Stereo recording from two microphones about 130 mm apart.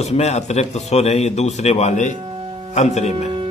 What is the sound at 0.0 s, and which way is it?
A man's voice, 55° left (ahead or behind).